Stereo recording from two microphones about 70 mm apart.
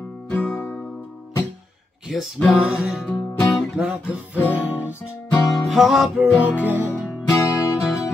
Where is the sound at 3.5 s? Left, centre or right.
Centre.